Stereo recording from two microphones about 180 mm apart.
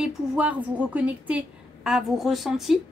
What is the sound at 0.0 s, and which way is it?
A woman's voice, 5° right (ahead or behind).